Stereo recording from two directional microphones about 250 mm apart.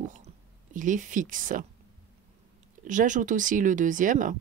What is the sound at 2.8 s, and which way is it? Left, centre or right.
Speech, right.